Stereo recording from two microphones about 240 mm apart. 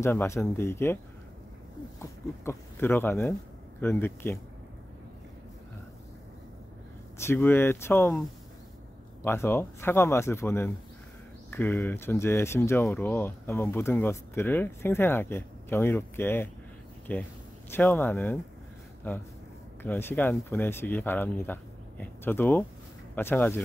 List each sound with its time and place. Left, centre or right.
0.0 s speech: centre
2.0 s speech: centre
7.2 s speech: centre